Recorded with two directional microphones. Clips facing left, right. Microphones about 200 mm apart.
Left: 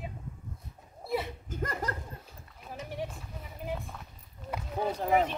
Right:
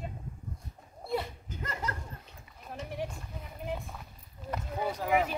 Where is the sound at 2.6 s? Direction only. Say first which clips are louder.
Even; centre (ahead or behind).